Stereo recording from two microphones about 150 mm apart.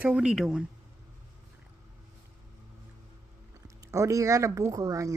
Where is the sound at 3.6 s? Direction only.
20° right (ahead or behind).